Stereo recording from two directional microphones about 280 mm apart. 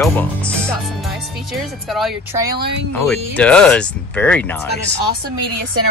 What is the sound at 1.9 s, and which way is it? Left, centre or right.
Speech, centre.